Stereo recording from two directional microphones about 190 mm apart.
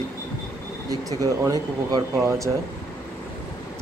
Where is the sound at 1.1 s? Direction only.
20° right (ahead or behind).